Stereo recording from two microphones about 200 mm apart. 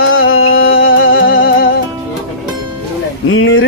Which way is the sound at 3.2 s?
85° left.